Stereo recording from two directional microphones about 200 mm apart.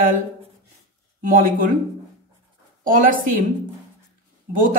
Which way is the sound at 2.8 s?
45° right (ahead or behind).